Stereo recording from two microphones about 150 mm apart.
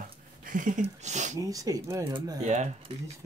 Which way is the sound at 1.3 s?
25° right (ahead or behind).